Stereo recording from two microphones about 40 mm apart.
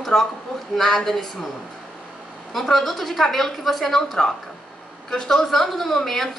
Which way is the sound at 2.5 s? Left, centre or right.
Centre.